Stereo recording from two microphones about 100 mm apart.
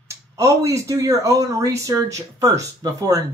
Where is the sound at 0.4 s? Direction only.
30° right (ahead or behind).